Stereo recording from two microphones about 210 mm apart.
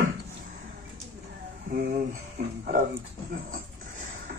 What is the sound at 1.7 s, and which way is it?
Speech, 35° right (ahead or behind).